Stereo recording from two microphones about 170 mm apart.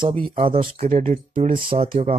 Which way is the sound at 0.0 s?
35° right (ahead or behind).